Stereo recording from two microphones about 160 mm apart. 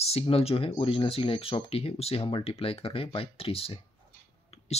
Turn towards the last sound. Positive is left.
turn(degrees=40)  # may be behind; listen again after turning